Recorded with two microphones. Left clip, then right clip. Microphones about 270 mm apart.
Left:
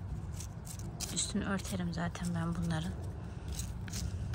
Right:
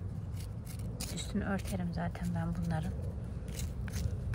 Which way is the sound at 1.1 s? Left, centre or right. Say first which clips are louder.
Left 1 dB; centre.